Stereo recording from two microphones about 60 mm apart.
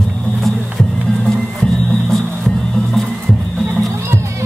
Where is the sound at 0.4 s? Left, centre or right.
Centre.